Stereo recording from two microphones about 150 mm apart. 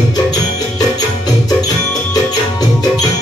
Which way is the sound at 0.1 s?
25° left (ahead or behind).